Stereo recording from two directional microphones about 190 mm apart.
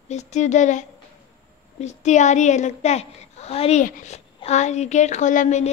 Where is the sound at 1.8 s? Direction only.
40° left (ahead or behind).